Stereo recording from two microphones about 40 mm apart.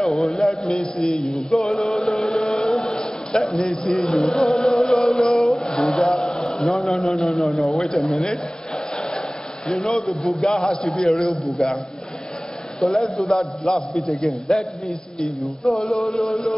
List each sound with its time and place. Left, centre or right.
0.0 s a man's voice: centre
0.7 s a man's voice: left
1.5 s music: centre
2.0 s chant: centre
5.6 s a sound: centre
6.7 s a man's voice: centre
7.2 s a man's voice: centre
7.5 s speech: centre
9.8 s a man's voice: centre
12.8 s a man's voice: centre